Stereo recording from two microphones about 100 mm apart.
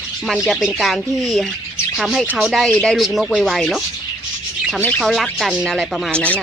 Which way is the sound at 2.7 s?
10° left (ahead or behind).